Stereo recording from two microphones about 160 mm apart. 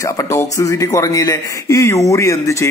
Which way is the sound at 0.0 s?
20° left (ahead or behind).